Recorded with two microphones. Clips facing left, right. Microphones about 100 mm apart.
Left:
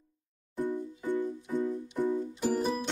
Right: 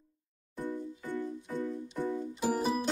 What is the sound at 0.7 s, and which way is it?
Music, 15° left (ahead or behind).